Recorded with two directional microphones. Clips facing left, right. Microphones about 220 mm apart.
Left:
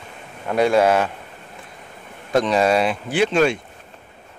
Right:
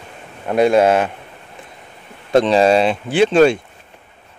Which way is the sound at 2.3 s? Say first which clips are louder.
Right 5 dB; 30° right (ahead or behind).